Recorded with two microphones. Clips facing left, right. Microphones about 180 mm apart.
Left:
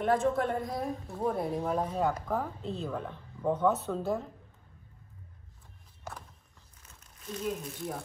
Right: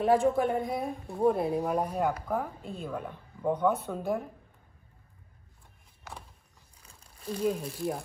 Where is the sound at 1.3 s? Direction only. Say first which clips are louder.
Right 3 dB; 15° right (ahead or behind).